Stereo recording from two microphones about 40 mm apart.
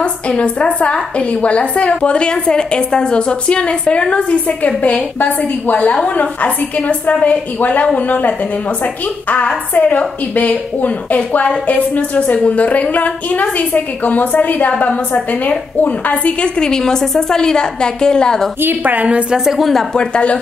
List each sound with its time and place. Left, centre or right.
0.0 s a woman's voice: left
9.3 s a woman's voice: left
16.3 s a woman's voice: left
18.6 s a woman's voice: right
18.9 s a woman's voice: right
19.3 s a woman's voice: centre
19.9 s a woman's voice: left